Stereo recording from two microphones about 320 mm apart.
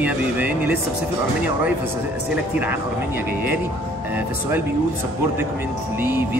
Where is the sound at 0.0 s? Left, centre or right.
Centre.